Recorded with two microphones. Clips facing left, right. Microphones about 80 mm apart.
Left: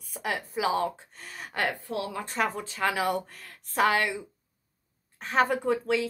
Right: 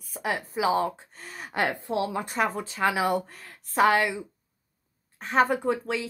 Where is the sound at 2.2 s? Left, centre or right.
Centre.